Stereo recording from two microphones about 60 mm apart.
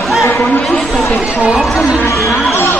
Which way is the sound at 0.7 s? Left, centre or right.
Centre.